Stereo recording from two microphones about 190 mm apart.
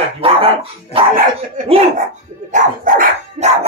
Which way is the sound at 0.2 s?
30° right (ahead or behind).